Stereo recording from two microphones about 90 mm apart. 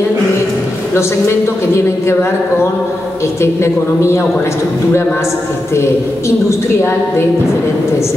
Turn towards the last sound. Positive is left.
turn(degrees=30)  # may be behind; listen again after turning